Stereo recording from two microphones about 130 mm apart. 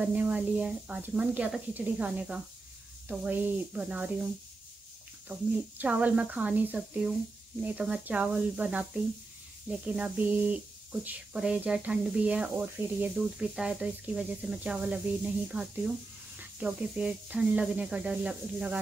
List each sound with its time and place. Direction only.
0.0 s speech: 10° right (ahead or behind)
5.8 s speech: 10° right (ahead or behind)